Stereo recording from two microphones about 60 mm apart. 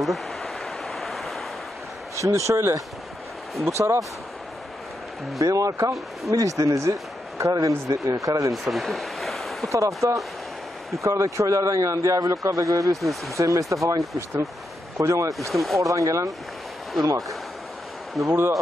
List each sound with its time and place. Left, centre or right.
0.0 s a sound: centre
2.1 s a man's voice: right
5.4 s speech: right
8.6 s waves: centre
9.7 s a man's voice: right
12.9 s speech: centre
13.4 s a man's voice: right
15.3 s speech: centre
15.8 s a man's voice: right
18.2 s speech: centre